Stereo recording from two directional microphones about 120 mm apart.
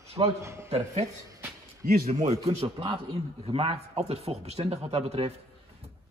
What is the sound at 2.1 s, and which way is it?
A man's voice, 75° right (ahead or behind).